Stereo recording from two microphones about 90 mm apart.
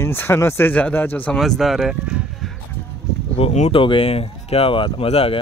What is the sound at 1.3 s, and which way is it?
Speech, centre (ahead or behind).